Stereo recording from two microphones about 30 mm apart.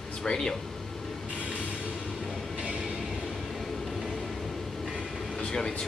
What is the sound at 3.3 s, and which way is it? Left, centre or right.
Music, centre.